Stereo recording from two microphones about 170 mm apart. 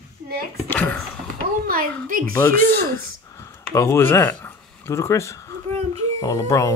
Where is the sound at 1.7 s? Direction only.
55° right (ahead or behind).